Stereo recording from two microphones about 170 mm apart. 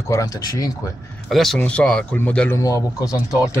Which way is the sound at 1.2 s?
Centre (ahead or behind).